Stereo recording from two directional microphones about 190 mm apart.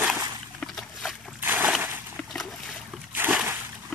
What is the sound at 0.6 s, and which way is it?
Boat, centre (ahead or behind).